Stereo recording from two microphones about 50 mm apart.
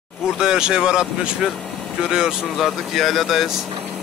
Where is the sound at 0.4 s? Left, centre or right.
Centre.